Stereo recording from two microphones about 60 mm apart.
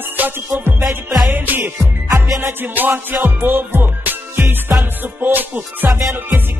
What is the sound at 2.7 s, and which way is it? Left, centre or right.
Music, right.